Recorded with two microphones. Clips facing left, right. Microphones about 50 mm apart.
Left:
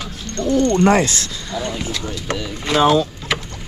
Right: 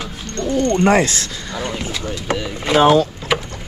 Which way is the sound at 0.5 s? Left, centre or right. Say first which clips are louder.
Left 1 dB; right.